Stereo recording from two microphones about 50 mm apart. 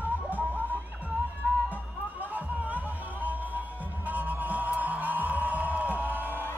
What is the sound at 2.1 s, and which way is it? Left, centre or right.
Music, right.